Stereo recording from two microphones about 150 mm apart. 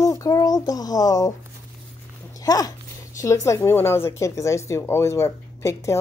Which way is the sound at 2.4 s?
25° left (ahead or behind).